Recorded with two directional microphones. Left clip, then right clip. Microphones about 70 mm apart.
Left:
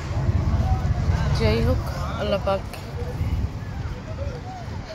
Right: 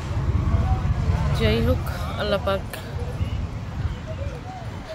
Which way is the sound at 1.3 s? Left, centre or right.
Right.